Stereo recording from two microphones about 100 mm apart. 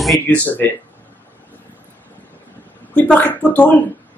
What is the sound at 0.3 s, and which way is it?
Speech, 20° left (ahead or behind).